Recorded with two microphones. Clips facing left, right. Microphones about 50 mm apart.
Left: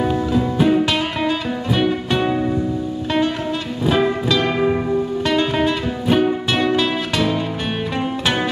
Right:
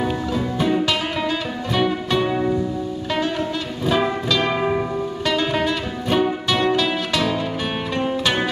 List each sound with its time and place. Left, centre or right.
0.3 s music: centre
4.0 s music: centre
5.7 s music: centre